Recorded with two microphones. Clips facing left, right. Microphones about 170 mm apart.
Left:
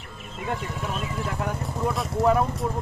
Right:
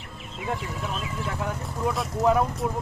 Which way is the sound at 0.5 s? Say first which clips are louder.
Left 1 dB; 5° left (ahead or behind).